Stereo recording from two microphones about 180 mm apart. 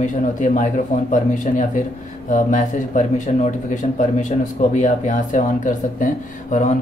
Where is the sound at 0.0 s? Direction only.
45° left (ahead or behind).